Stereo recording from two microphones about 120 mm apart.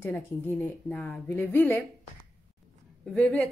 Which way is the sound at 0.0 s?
15° left (ahead or behind).